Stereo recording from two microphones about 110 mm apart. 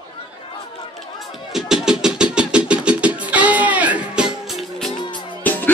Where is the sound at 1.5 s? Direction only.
5° right (ahead or behind).